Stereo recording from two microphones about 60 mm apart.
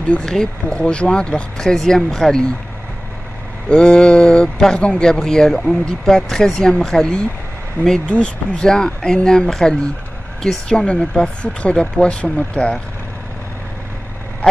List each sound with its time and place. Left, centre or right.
0.1 s speech: centre
3.6 s speech: centre